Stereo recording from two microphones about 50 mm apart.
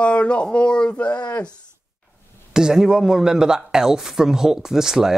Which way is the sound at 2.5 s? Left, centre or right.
Centre.